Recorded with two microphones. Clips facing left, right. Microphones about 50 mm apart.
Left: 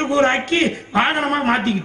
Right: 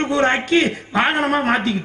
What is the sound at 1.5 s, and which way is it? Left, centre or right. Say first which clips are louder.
Speech: even; left.